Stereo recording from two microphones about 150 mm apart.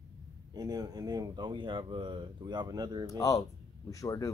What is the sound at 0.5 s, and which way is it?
Speech, 25° right (ahead or behind).